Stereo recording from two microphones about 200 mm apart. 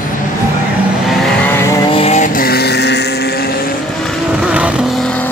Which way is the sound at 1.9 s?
30° left (ahead or behind).